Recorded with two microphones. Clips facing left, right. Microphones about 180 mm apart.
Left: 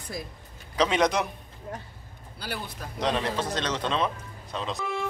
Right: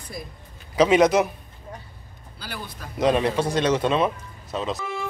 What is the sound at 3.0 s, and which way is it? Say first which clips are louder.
Speech: right 7 dB; 10° right (ahead or behind).